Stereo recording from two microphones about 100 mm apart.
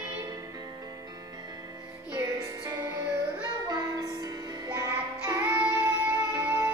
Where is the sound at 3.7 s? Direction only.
40° right (ahead or behind).